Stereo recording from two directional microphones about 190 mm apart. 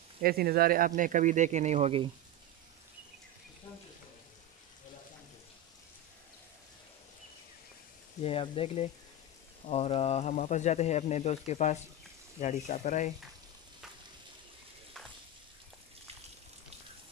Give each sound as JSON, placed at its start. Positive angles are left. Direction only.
{"t": 0.2, "sound": "speech", "side_deg": -55}
{"t": 8.2, "sound": "speech", "side_deg": 30}